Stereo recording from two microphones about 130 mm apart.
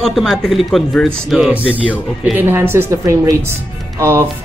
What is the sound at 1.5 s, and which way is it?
Speech, 10° right (ahead or behind).